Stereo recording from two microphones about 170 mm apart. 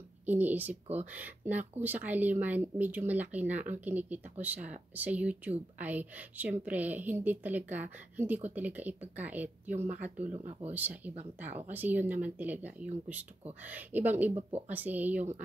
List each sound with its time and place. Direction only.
0.2 s a woman's voice: 10° right (ahead or behind)
10.2 s speech: 40° right (ahead or behind)
10.7 s a woman's voice: 10° right (ahead or behind)